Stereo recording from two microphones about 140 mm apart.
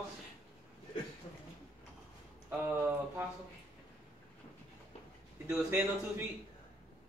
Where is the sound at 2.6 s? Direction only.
15° right (ahead or behind).